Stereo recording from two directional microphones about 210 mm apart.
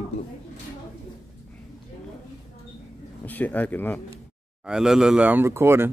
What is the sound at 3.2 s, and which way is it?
Speech, 10° left (ahead or behind).